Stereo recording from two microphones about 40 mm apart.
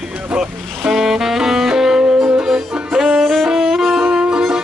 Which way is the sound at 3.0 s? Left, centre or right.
Centre.